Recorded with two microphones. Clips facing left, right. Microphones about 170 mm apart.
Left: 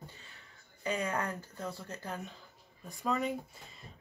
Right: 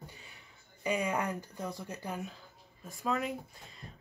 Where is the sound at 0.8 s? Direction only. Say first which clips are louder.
Right 2 dB; 10° right (ahead or behind).